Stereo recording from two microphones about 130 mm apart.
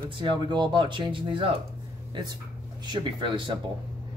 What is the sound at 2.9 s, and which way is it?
Speech, 40° right (ahead or behind).